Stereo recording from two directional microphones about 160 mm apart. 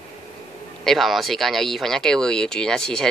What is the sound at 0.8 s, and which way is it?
Speech, centre (ahead or behind).